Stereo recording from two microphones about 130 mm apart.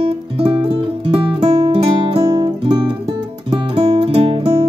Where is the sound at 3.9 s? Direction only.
50° right (ahead or behind).